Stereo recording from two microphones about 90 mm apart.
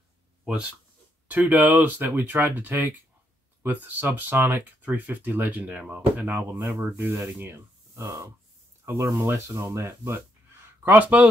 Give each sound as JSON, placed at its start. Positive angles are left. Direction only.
{"t": 1.3, "sound": "speech", "side_deg": -20}
{"t": 10.8, "sound": "speech", "side_deg": -20}